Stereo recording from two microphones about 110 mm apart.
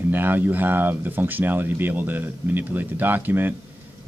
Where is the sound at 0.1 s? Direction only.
15° right (ahead or behind).